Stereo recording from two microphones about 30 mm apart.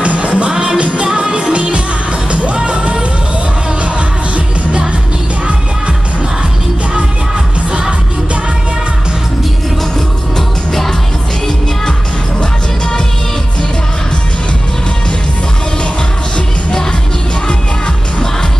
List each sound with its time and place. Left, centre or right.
0.0 s music: right
0.5 s music: right
0.9 s music: right
10.7 s music: centre
12.4 s music: left